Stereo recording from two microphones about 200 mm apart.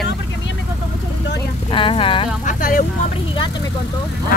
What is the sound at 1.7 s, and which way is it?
Vehicle, 25° left (ahead or behind).